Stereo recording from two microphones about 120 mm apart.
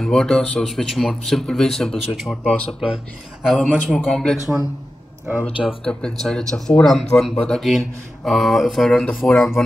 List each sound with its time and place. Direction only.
0.0 s speech: 5° left (ahead or behind)
5.9 s speech: 5° left (ahead or behind)